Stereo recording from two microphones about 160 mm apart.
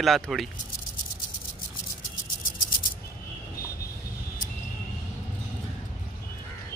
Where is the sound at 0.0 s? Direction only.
Centre (ahead or behind).